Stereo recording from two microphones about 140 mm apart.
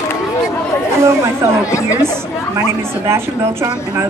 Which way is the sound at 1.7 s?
20° left (ahead or behind).